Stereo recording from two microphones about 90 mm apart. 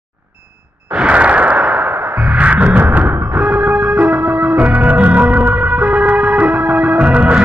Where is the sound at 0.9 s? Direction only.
15° right (ahead or behind).